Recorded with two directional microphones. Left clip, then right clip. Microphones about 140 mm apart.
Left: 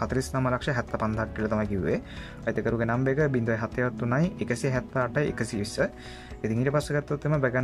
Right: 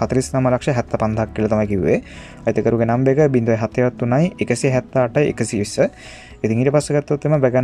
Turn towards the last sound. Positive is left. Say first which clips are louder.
# right 10 dB
turn(degrees=-15)  # may be behind; listen again after turning